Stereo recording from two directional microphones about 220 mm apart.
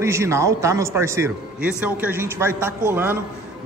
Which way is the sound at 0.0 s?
10° right (ahead or behind).